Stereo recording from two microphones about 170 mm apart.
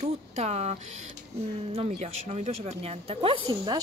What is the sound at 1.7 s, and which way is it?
Speech, 40° right (ahead or behind).